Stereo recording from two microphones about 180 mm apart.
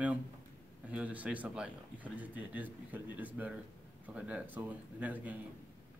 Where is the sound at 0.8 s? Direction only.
10° right (ahead or behind).